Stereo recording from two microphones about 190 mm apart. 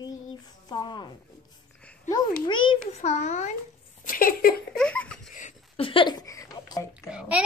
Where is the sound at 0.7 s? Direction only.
20° left (ahead or behind).